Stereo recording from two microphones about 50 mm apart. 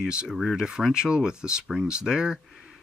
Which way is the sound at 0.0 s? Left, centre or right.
Centre.